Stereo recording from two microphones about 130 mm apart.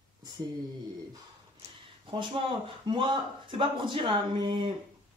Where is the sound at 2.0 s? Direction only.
40° right (ahead or behind).